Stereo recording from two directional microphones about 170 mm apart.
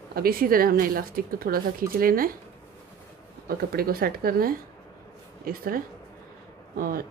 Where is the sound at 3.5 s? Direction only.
65° right (ahead or behind).